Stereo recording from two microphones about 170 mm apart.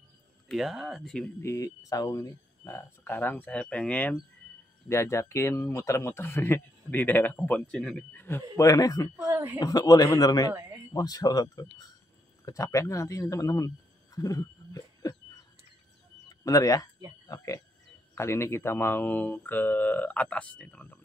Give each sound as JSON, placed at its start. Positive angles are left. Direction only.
{"t": 0.5, "sound": "speech", "side_deg": 0}
{"t": 1.4, "sound": "speech", "side_deg": 20}
{"t": 4.8, "sound": "speech", "side_deg": 15}
{"t": 9.2, "sound": "a woman's voice", "side_deg": -15}
{"t": 9.6, "sound": "speech", "side_deg": 20}
{"t": 16.3, "sound": "a sound", "side_deg": 20}
{"t": 17.3, "sound": "speech", "side_deg": 20}